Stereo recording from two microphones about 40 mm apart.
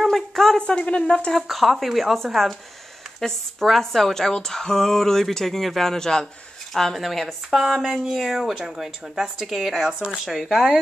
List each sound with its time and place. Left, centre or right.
0.1 s a sound: centre
0.6 s speech: left
1.3 s speech: centre